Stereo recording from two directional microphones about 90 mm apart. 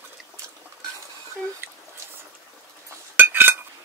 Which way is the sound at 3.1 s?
25° right (ahead or behind).